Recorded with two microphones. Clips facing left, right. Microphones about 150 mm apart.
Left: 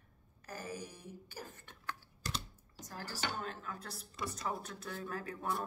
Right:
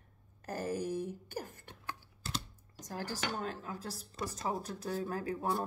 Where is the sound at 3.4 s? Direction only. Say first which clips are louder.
Right 4 dB; 35° right (ahead or behind).